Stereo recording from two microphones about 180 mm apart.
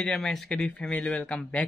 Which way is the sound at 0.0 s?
Centre (ahead or behind).